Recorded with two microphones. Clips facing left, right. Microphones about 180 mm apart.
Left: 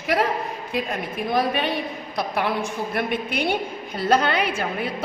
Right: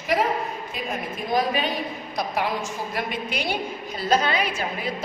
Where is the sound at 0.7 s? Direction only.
60° left (ahead or behind).